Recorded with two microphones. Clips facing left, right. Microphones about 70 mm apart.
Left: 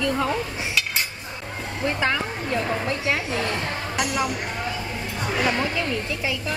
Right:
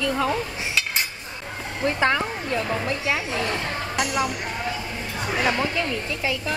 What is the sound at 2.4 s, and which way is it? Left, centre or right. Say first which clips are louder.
Speech: even; left.